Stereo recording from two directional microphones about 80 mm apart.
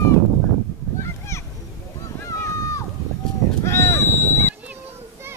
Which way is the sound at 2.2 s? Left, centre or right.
Left.